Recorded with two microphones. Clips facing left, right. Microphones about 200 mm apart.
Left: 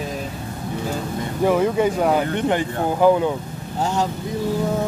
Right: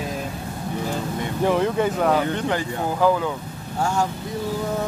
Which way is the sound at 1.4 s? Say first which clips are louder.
Left 3 dB; 5° left (ahead or behind).